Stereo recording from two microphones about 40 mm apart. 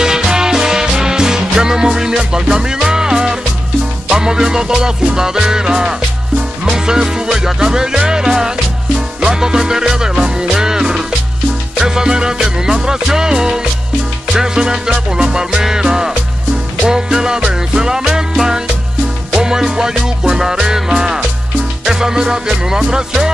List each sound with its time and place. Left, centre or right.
0.0 s music: centre